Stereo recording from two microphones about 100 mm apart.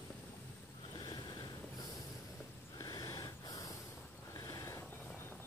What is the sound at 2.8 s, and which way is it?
Snort, 35° left (ahead or behind).